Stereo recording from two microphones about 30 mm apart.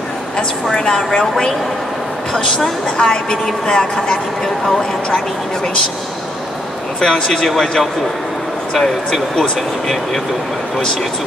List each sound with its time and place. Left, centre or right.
0.9 s speech: centre
3.0 s a woman's voice: left
7.0 s speech: left
8.7 s speech: centre